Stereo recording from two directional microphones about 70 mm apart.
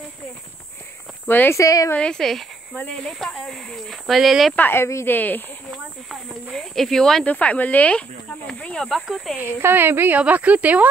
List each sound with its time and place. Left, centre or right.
1.2 s speech: left
1.5 s speech: left
2.0 s speech: centre
4.6 s speech: left
6.5 s speech: centre
7.2 s speech: left; by 9.4 s centre
9.4 s speech: right
10.1 s speech: centre